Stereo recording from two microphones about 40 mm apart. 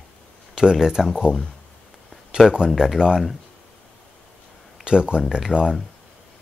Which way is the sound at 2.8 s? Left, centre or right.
Centre.